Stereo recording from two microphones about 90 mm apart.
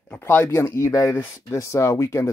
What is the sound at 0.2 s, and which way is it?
Speech, 25° left (ahead or behind).